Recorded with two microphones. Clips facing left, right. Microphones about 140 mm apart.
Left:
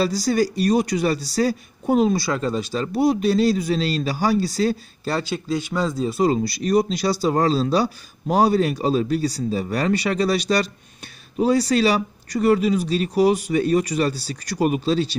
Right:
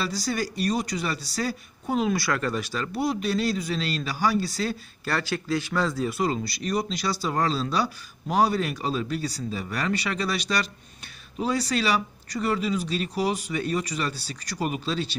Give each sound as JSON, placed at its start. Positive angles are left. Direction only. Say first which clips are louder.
{"t": 0.2, "sound": "speech", "louder": "left 8 dB", "side_deg": 40}
{"t": 2.1, "sound": "speech", "louder": "left 4 dB", "side_deg": 25}
{"t": 3.0, "sound": "speech", "louder": "left 8 dB", "side_deg": 40}
{"t": 5.0, "sound": "speech", "louder": "left 3 dB", "side_deg": 20}
{"t": 6.1, "sound": "speech", "louder": "left 7 dB", "side_deg": 35}